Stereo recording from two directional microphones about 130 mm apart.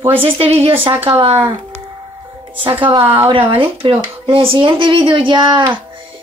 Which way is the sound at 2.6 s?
40° right (ahead or behind).